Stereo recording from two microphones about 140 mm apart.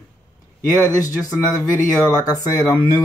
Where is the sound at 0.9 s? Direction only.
25° left (ahead or behind).